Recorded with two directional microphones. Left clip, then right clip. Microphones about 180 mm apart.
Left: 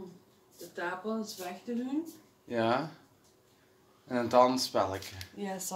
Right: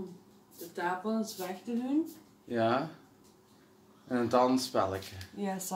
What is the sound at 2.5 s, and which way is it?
Speech, 50° left (ahead or behind).